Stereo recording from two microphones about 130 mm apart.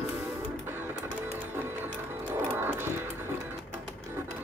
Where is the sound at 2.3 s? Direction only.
15° right (ahead or behind).